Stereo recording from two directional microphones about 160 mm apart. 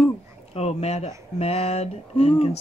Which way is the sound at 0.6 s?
40° left (ahead or behind).